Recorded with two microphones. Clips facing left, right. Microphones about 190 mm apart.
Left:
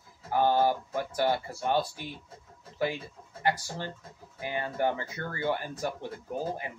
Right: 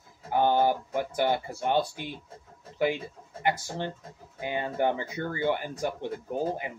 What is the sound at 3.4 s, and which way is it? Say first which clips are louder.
Speech: right 1 dB; 20° right (ahead or behind).